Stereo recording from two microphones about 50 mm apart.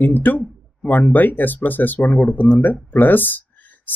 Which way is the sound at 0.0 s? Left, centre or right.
Left.